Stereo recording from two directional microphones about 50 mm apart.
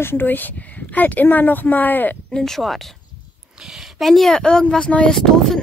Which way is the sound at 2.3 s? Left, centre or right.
Centre.